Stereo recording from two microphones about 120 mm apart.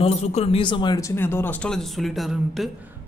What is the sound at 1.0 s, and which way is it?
Speech, 20° left (ahead or behind).